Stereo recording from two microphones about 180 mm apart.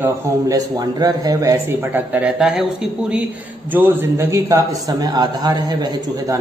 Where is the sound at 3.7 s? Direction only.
10° right (ahead or behind).